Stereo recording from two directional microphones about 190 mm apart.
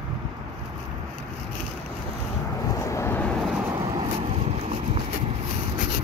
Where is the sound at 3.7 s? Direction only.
25° right (ahead or behind).